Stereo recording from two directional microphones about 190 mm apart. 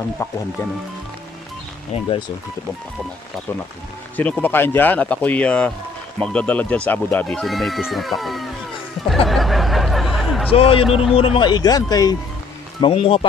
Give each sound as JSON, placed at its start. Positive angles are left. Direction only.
{"t": 0.2, "sound": "speech", "side_deg": 15}
{"t": 4.2, "sound": "speech", "side_deg": 10}
{"t": 9.0, "sound": "a sound", "side_deg": 0}
{"t": 10.5, "sound": "speech", "side_deg": 30}
{"t": 10.9, "sound": "speech", "side_deg": 0}
{"t": 11.1, "sound": "speech", "side_deg": 25}
{"t": 12.8, "sound": "speech", "side_deg": 30}